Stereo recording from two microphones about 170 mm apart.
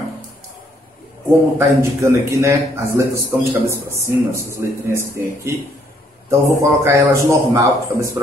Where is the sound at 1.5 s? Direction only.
15° right (ahead or behind).